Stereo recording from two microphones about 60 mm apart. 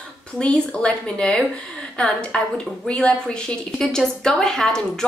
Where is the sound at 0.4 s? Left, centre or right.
Centre.